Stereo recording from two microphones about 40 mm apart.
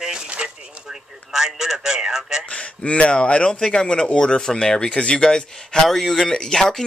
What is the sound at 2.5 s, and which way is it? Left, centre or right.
Speech, left.